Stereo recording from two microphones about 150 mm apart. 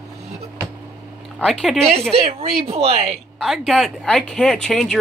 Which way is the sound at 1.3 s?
5° left (ahead or behind).